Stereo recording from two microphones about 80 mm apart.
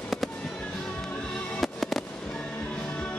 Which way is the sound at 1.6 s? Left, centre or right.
Centre.